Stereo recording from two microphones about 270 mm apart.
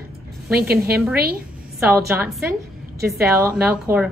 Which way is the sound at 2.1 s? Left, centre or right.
Centre.